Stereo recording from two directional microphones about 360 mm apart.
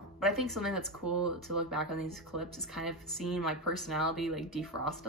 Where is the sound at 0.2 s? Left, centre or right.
Centre.